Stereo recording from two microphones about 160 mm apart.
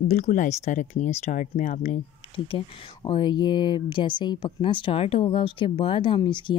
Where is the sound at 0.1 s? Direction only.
55° left (ahead or behind).